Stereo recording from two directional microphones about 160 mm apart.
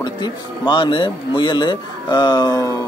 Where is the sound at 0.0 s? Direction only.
30° left (ahead or behind).